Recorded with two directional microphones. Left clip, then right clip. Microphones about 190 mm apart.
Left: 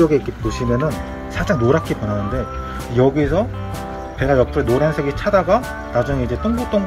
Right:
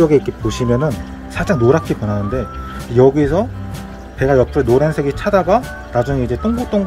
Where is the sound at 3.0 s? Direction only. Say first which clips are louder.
Right 4 dB; 40° right (ahead or behind).